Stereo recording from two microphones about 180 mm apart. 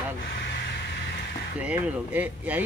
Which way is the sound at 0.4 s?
70° left (ahead or behind).